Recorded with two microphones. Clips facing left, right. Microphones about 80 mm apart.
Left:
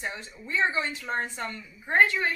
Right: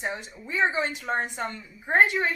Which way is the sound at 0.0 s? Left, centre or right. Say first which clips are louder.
Right 3 dB; right.